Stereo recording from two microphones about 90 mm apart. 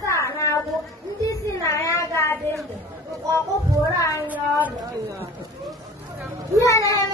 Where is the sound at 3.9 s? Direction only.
40° left (ahead or behind).